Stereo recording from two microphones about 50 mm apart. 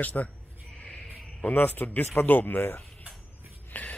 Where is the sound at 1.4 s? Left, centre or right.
Left.